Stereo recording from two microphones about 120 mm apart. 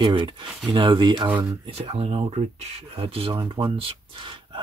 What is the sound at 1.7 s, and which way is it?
Speech, 55° right (ahead or behind).